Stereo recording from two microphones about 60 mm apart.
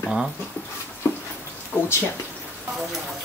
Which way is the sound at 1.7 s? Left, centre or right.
Left.